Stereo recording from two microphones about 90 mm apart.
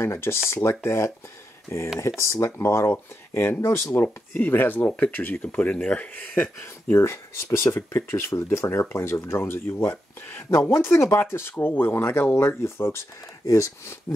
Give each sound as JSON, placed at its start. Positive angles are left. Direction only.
{"t": 0.0, "sound": "speech", "side_deg": 30}